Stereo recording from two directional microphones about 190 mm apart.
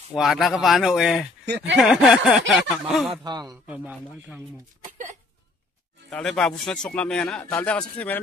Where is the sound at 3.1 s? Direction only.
20° right (ahead or behind).